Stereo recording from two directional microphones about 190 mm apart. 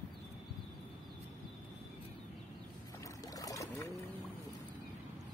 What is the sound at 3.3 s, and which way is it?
Boat, 20° left (ahead or behind).